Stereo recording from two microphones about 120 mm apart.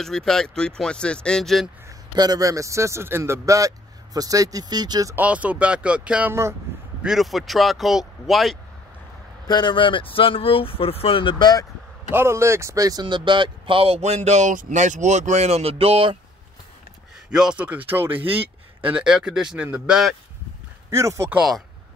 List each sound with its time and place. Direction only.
0.0 s speech: 5° left (ahead or behind)
1.9 s a man's voice: 35° right (ahead or behind)
5.1 s speech: 10° right (ahead or behind)
9.5 s speech: 40° left (ahead or behind)
12.1 s a man's voice: 20° right (ahead or behind)
13.0 s speech: 40° right (ahead or behind)
17.3 s speech: 5° right (ahead or behind)
18.2 s a sound: 50° right (ahead or behind)
18.9 s speech: 5° right (ahead or behind)
20.9 s a man's voice: 25° right (ahead or behind)
21.4 s speech: centre (ahead or behind)